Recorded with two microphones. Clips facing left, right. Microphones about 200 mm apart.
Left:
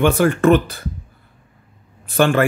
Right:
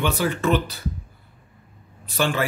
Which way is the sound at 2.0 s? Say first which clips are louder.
Left 8 dB; 55° left (ahead or behind).